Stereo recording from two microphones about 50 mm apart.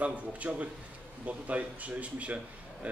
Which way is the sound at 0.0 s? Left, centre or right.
Right.